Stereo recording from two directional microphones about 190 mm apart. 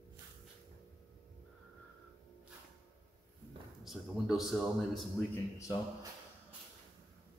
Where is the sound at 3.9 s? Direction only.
Centre (ahead or behind).